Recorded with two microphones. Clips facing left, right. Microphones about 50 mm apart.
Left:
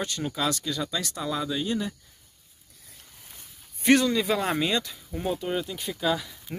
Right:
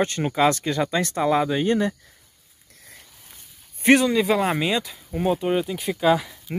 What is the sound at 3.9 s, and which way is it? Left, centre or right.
Speech, centre.